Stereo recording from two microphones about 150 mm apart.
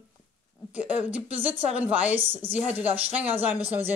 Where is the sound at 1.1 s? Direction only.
10° right (ahead or behind).